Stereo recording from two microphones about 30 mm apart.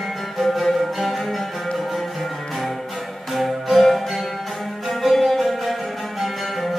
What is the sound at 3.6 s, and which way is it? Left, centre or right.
Music, centre.